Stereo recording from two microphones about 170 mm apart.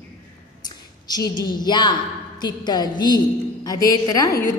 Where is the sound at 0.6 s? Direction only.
25° left (ahead or behind).